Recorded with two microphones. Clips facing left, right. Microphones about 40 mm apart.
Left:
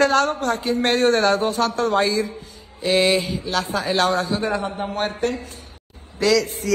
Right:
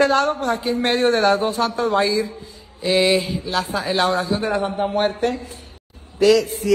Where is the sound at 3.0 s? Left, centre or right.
Centre.